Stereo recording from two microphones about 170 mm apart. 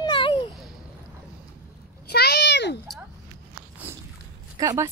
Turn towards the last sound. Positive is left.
turn(degrees=-25)  # may be behind; listen again after turning